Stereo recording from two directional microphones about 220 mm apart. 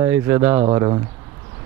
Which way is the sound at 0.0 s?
10° right (ahead or behind).